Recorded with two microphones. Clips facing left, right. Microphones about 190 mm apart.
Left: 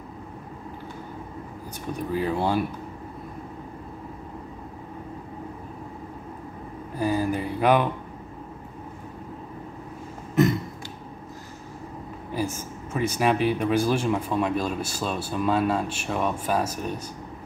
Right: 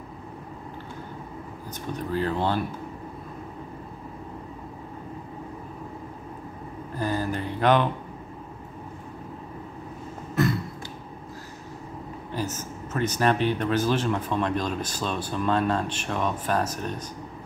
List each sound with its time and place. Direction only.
2.0 s speech: 10° left (ahead or behind)
7.0 s speech: 10° left (ahead or behind)
10.3 s a sound: 20° left (ahead or behind)
12.4 s speech: 10° left (ahead or behind)